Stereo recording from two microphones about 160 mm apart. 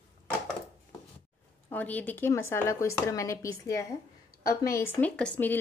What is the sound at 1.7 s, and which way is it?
Speech, 10° left (ahead or behind).